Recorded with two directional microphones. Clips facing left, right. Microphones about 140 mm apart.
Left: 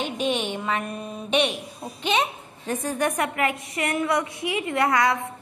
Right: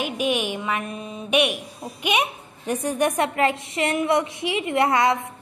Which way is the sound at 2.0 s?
15° right (ahead or behind).